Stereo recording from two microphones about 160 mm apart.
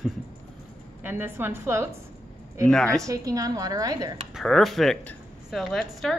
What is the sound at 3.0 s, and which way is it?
A woman's voice, 20° right (ahead or behind).